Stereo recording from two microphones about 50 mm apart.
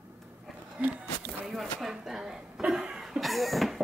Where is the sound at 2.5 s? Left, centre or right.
Right.